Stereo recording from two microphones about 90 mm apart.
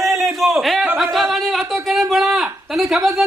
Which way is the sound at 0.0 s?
Centre (ahead or behind).